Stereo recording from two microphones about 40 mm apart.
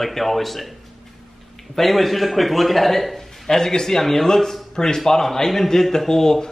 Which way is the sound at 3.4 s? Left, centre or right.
Centre.